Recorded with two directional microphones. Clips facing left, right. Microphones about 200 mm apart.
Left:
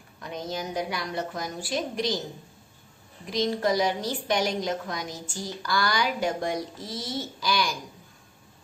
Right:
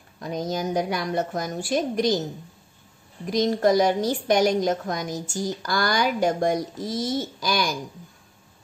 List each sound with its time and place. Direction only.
0.2 s a woman's voice: 40° right (ahead or behind)
3.3 s a woman's voice: 45° right (ahead or behind)